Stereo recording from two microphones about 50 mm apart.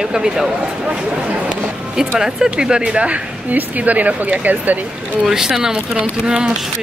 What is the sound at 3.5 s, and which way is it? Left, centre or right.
Speech, right.